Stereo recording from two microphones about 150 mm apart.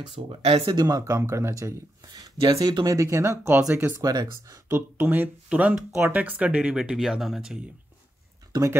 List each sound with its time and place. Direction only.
0.3 s speech: 40° right (ahead or behind)
0.7 s speech: 25° right (ahead or behind); by 7.6 s 5° right (ahead or behind)